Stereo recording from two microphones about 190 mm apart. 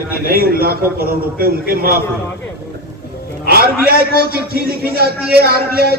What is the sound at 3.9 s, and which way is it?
A man's voice, 55° right (ahead or behind).